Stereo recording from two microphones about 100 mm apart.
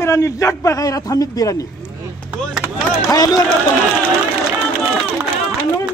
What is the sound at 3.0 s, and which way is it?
Speech, 40° left (ahead or behind).